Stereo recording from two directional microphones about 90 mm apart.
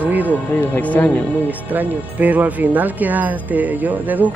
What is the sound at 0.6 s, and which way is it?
Speech, 20° left (ahead or behind).